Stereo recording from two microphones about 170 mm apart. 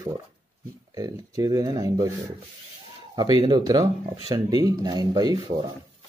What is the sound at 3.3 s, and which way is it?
Speech, 25° right (ahead or behind).